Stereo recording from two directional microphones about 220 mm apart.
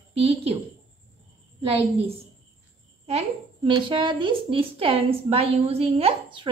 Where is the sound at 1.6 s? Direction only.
25° right (ahead or behind).